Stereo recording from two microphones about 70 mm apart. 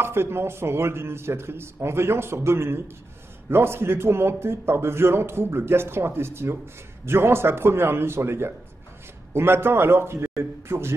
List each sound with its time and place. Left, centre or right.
0.0 s a man's voice: right